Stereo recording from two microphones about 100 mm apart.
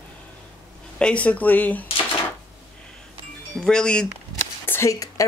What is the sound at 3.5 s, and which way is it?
Speech, 5° left (ahead or behind).